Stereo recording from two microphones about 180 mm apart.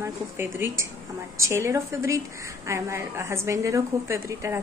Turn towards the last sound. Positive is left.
turn(degrees=-15)  # may be behind; listen again after turning